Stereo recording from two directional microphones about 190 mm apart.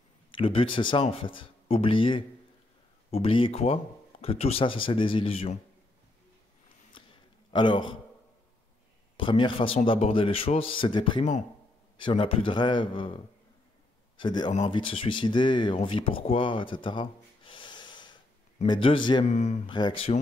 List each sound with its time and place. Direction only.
0.3 s speech: 30° left (ahead or behind)
7.5 s speech: 25° left (ahead or behind)
9.1 s a man's voice: 25° left (ahead or behind)
19.2 s speech: 35° left (ahead or behind)
19.7 s speech: 25° left (ahead or behind)